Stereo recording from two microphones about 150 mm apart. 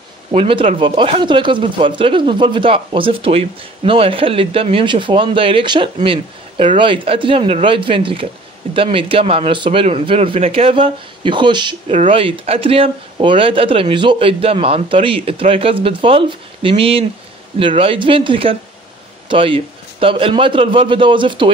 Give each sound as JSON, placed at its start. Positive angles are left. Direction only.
{"t": 0.3, "sound": "a man's voice", "side_deg": -40}